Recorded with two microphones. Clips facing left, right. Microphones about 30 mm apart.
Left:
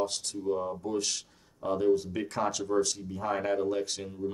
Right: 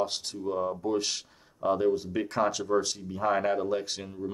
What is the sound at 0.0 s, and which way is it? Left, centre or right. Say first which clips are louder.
Speech: right 1 dB; right.